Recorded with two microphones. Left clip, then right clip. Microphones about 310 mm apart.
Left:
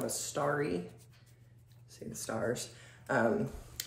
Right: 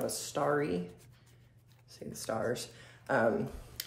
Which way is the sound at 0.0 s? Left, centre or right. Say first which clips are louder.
Right 1 dB; centre.